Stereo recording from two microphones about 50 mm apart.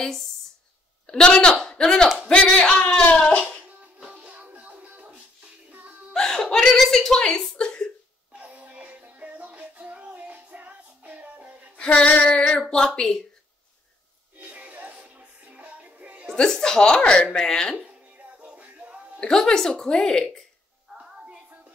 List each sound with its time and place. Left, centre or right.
1.0 s speech: centre
3.0 s music: left
4.1 s music: right
6.1 s a sound: centre
8.3 s music: right
11.7 s speech: left
14.4 s music: right
16.3 s speech: centre
17.8 s music: right
19.1 s speech: centre
21.0 s music: right